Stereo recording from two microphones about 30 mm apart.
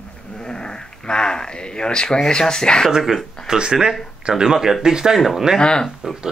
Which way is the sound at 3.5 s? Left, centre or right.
Right.